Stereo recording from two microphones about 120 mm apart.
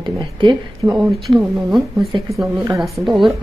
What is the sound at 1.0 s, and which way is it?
A woman's voice, centre (ahead or behind).